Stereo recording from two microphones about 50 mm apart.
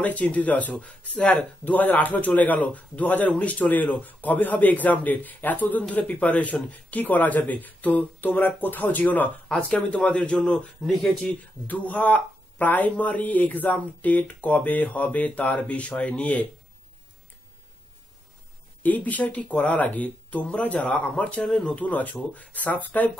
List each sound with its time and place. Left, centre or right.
0.0 s speech: left
1.6 s speech: left
9.5 s speech: centre
11.6 s speech: left
18.8 s speech: left
21.4 s speech: centre
21.6 s speech: left